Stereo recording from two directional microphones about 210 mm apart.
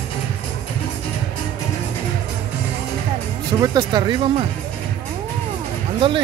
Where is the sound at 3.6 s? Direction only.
20° right (ahead or behind).